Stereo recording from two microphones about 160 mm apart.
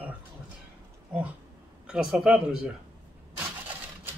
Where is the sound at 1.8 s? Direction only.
5° right (ahead or behind).